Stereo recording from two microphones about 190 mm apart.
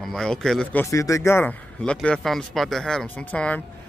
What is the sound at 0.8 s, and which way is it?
Speech, 15° left (ahead or behind).